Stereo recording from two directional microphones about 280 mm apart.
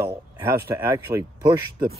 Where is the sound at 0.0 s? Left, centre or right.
Centre.